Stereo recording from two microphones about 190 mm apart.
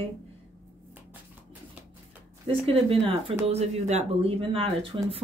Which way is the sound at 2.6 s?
30° right (ahead or behind).